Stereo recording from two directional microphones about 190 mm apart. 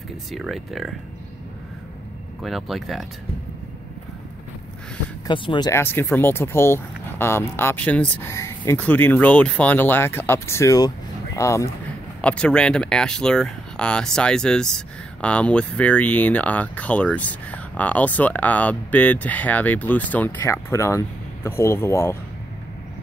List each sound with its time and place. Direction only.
0.3 s speech: centre (ahead or behind)
2.4 s speech: centre (ahead or behind)
5.2 s speech: 25° left (ahead or behind)
5.7 s speech: 10° left (ahead or behind)